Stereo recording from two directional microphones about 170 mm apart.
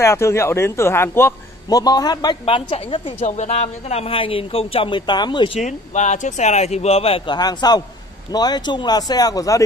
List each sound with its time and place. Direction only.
0.0 s a man's voice: 15° left (ahead or behind)
5.6 s a man's voice: 45° left (ahead or behind); by 9.6 s 20° left (ahead or behind)